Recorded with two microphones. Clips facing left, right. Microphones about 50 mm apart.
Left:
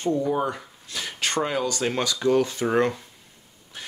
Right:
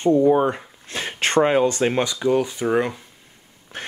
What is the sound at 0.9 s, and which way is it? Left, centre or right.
Speech, right.